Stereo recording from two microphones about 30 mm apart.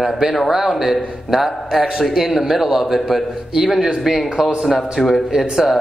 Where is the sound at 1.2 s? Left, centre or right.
Centre.